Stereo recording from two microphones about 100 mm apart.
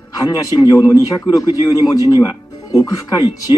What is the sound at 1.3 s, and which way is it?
A man's voice, 35° left (ahead or behind).